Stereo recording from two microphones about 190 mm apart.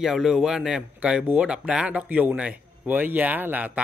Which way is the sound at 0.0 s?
Centre (ahead or behind).